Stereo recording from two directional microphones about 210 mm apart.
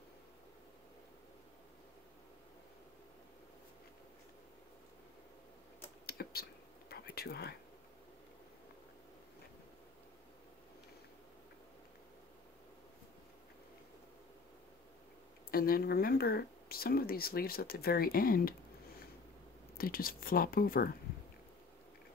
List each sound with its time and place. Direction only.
6.0 s whispering: 50° left (ahead or behind)
15.5 s speech: 45° left (ahead or behind)
19.8 s speech: 45° left (ahead or behind)